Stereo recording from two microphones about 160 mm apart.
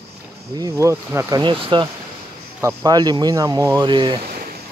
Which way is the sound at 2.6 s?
20° right (ahead or behind).